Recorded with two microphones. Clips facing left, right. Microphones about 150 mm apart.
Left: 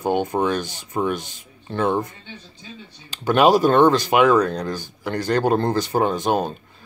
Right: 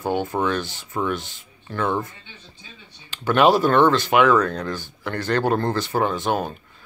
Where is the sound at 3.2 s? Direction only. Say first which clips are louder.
Left 1 dB; 15° left (ahead or behind).